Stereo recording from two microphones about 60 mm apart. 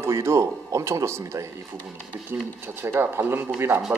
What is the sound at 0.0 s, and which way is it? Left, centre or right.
Speech, right.